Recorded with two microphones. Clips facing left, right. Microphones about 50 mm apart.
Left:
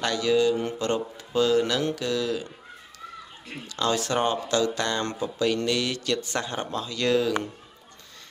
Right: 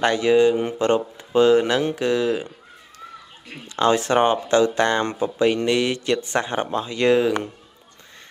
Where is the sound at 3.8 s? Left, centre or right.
Right.